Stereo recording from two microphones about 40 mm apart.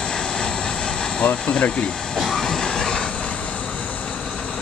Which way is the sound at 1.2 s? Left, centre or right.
Left.